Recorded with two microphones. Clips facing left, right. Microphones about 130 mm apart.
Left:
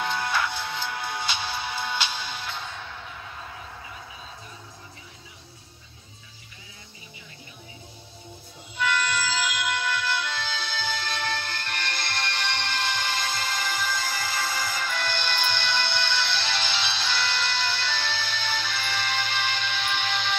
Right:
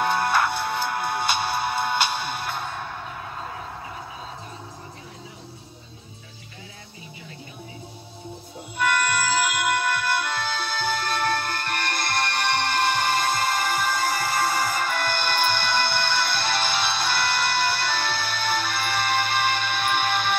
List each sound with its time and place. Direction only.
0.0 s music: 55° right (ahead or behind)
8.7 s music: 55° right (ahead or behind)